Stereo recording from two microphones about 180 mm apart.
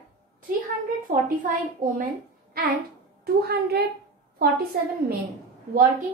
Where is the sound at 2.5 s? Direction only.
55° right (ahead or behind).